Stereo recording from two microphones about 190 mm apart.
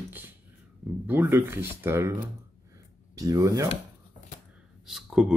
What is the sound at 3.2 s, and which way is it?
Speech, 20° right (ahead or behind).